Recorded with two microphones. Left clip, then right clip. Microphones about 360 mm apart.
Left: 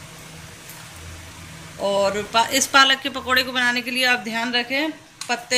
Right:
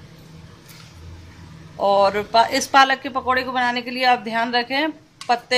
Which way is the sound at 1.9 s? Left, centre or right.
Right.